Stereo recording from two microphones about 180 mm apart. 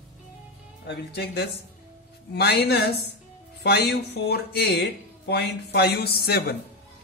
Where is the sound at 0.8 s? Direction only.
65° left (ahead or behind).